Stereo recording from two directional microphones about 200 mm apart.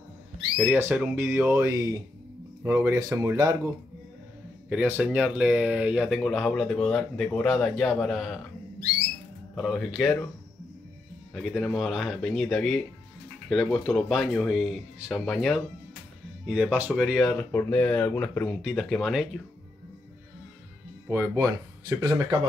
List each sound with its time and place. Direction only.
0.6 s speech: 10° right (ahead or behind)
9.6 s speech: centre (ahead or behind)
11.3 s speech: centre (ahead or behind)
21.1 s speech: 15° right (ahead or behind)